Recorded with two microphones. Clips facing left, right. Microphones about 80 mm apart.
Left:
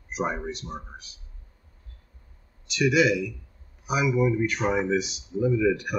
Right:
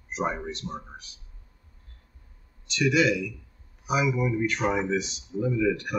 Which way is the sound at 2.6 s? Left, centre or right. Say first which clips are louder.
Left 1 dB; centre.